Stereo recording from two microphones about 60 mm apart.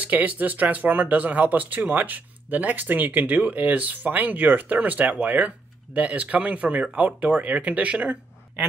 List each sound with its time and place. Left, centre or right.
0.0 s speech: right